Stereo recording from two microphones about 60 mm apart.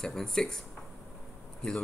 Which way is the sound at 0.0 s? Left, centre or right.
Centre.